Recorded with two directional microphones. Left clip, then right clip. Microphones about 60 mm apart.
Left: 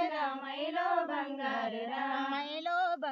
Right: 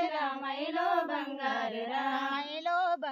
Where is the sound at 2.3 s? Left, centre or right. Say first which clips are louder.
Right 2 dB; right.